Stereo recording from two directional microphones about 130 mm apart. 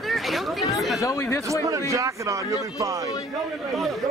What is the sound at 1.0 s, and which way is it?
Speech, 25° left (ahead or behind).